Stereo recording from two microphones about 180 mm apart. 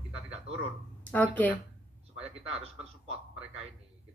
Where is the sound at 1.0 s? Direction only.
10° left (ahead or behind).